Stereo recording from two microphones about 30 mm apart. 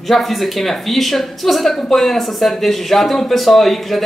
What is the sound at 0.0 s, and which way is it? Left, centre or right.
Speech, centre.